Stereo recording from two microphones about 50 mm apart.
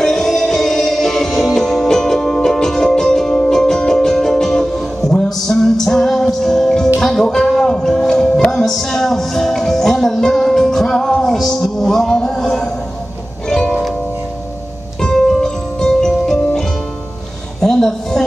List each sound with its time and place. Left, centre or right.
0.0 s music: centre
15.0 s music: centre
17.6 s a sound: centre